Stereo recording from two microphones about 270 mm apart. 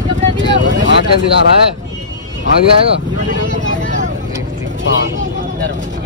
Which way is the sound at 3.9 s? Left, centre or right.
Right.